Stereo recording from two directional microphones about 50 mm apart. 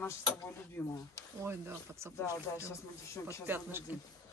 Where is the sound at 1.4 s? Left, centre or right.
Right.